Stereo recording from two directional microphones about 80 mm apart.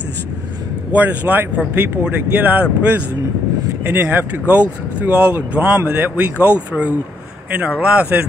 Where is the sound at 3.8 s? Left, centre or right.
Right.